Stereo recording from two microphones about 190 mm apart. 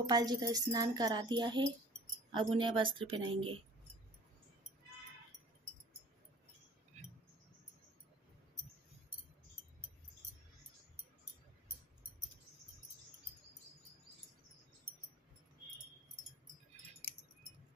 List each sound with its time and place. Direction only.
0.0 s speech: 20° right (ahead or behind)